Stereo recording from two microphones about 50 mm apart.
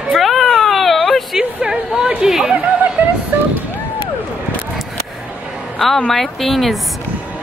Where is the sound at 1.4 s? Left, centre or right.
Centre.